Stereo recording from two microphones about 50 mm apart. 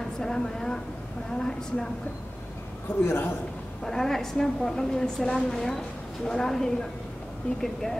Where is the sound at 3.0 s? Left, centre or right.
Left.